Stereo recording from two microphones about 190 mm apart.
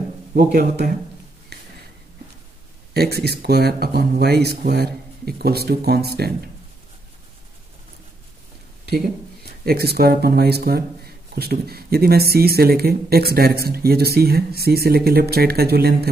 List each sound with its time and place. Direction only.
0.3 s a man's voice: 50° right (ahead or behind)
2.9 s speech: 55° right (ahead or behind)
8.8 s speech: 55° right (ahead or behind)